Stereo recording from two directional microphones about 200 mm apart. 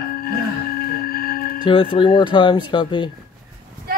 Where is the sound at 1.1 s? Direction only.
50° left (ahead or behind).